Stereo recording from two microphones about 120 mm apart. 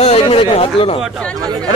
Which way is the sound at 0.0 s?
55° left (ahead or behind).